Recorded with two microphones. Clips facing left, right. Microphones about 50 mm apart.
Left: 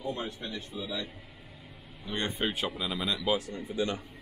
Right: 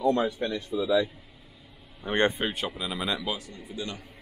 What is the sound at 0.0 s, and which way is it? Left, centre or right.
Speech, right.